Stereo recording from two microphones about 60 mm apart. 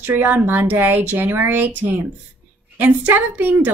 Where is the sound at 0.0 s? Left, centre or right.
Right.